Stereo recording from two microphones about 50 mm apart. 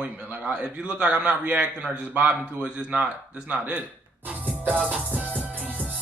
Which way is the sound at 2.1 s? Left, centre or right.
Right.